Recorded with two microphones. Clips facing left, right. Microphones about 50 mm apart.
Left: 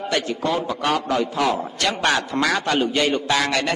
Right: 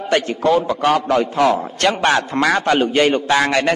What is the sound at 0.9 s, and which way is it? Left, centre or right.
A man's voice, right.